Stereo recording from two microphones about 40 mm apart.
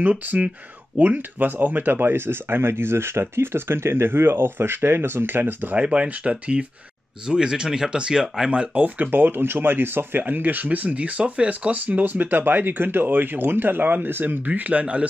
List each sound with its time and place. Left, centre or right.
0.9 s speech: right
5.8 s speech: right
7.2 s speech: centre
8.5 s speech: right
14.4 s speech: right